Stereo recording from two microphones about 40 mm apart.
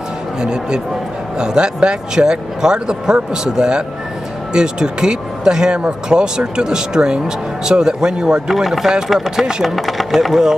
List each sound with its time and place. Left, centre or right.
0.4 s speech: right
8.5 s speech: centre
9.5 s speech: centre
9.8 s speech: centre